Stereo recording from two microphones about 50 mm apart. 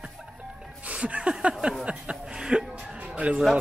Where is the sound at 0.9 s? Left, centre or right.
Right.